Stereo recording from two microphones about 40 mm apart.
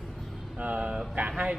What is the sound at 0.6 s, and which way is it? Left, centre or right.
Speech, right.